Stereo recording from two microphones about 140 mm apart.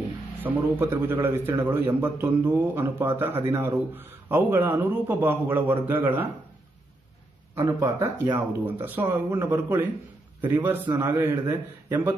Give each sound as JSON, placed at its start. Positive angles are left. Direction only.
{"t": 0.4, "sound": "a man's voice", "side_deg": -15}
{"t": 7.5, "sound": "a man's voice", "side_deg": -20}